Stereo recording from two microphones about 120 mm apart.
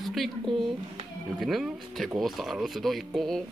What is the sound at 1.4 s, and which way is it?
Speech, centre (ahead or behind).